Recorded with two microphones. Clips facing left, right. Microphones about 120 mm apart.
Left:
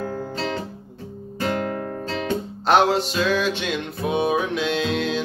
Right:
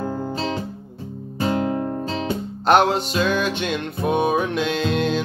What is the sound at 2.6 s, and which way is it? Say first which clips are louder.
Music: right 1 dB; centre (ahead or behind).